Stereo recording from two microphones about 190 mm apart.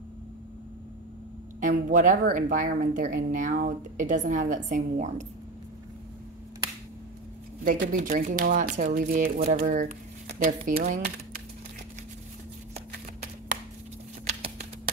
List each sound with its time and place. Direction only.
1.6 s speech: 45° right (ahead or behind)
7.6 s speech: 45° right (ahead or behind)
14.2 s clip-clop: 35° right (ahead or behind)